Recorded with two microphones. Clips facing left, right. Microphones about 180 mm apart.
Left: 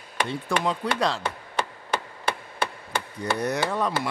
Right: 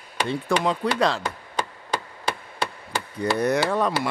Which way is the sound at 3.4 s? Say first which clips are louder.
Right 4 dB; 60° right (ahead or behind).